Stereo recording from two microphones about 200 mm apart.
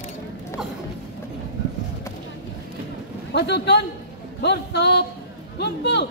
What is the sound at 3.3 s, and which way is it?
A man's voice, 55° left (ahead or behind).